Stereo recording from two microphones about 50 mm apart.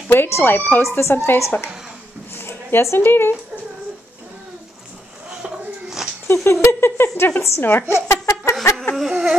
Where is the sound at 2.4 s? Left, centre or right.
Left.